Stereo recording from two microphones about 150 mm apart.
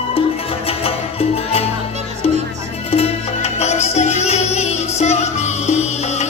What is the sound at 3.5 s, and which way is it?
Music, 45° left (ahead or behind).